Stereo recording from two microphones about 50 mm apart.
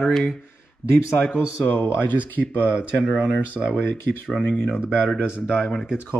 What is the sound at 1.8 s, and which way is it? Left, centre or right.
Speech, left.